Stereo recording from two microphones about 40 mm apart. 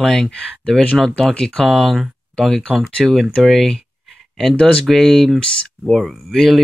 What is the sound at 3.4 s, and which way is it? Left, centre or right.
Speech, centre.